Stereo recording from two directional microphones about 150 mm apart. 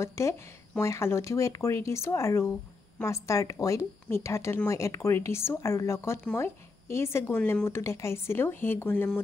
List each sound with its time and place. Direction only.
0.0 s speech: 20° left (ahead or behind)
7.3 s speech: 5° left (ahead or behind)
7.6 s speech: 20° left (ahead or behind)